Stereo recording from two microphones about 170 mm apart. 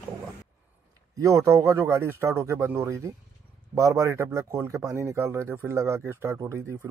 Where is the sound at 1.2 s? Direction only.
20° right (ahead or behind).